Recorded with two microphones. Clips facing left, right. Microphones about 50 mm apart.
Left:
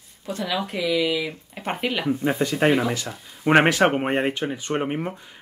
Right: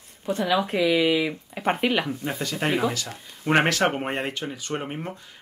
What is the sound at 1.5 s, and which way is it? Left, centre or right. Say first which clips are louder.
Speech: right 3 dB; centre.